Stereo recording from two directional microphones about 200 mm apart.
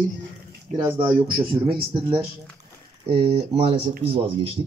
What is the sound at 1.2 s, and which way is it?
Speech, 25° right (ahead or behind).